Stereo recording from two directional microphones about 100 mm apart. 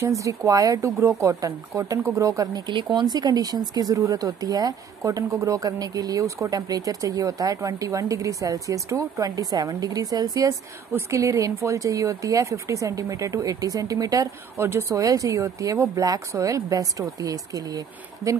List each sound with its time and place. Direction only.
0.0 s speech: 35° right (ahead or behind)
2.7 s speech: 50° right (ahead or behind); by 17.4 s 35° right (ahead or behind)